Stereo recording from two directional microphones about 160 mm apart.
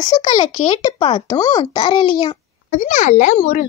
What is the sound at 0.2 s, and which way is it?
A child's voice, 30° left (ahead or behind).